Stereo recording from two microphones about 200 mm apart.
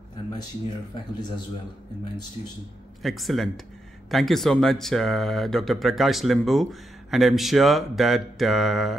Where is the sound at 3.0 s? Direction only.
Centre (ahead or behind).